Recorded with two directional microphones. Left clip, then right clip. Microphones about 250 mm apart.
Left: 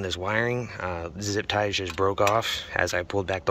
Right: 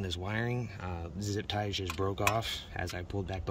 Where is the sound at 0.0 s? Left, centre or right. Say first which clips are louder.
Left 10 dB; centre.